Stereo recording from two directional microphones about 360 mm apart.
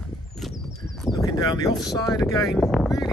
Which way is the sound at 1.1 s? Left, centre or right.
Centre.